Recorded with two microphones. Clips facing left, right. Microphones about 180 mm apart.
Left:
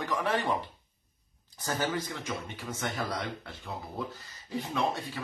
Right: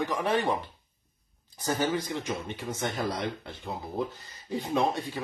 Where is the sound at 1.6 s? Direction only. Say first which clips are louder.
Right 3 dB; 20° right (ahead or behind).